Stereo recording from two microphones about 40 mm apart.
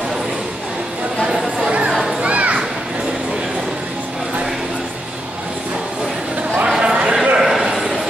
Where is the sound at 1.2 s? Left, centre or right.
Centre.